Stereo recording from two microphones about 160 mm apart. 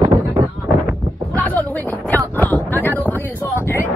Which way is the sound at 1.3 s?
10° left (ahead or behind).